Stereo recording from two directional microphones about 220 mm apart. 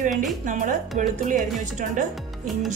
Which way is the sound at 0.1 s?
Centre (ahead or behind).